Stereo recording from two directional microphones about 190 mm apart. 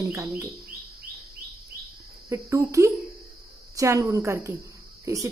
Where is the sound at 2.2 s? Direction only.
15° right (ahead or behind).